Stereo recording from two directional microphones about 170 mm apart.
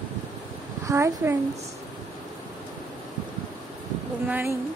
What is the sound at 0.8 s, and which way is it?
Speech, 15° right (ahead or behind).